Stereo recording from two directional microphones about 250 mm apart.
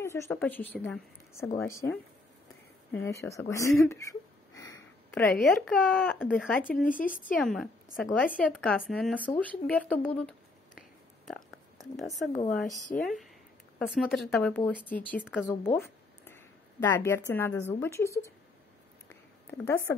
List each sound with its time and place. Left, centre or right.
0.0 s a woman's voice: centre
3.9 s a sound: centre
6.2 s speech: centre
6.7 s speech: left
7.3 s speech: centre
12.9 s a woman's voice: centre
19.4 s a woman's voice: centre